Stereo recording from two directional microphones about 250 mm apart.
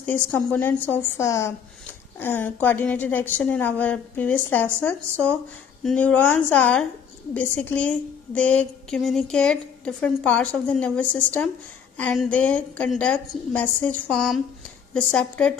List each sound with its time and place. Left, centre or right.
0.0 s a woman's voice: centre